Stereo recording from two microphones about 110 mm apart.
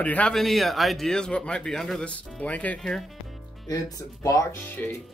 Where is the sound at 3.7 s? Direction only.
35° left (ahead or behind).